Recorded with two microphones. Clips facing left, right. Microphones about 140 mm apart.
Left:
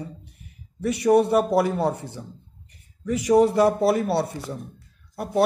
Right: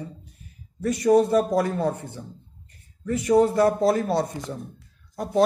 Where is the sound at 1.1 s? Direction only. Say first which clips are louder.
Even; 70° left (ahead or behind).